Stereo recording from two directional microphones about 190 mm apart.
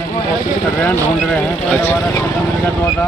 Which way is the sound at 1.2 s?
5° left (ahead or behind).